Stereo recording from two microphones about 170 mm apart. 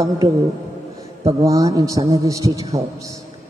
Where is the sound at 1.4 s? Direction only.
20° right (ahead or behind).